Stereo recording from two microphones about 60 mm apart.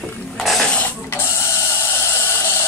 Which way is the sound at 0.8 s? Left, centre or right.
Left.